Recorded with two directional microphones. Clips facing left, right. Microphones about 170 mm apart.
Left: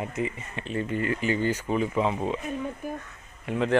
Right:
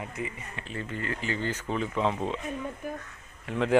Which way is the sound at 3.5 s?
15° left (ahead or behind).